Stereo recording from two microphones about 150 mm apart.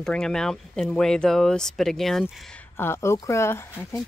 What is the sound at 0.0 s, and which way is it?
Speech, 5° left (ahead or behind).